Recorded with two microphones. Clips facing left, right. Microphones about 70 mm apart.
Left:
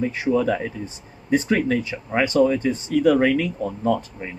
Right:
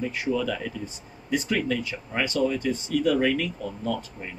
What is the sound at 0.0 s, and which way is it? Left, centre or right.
Speech, left.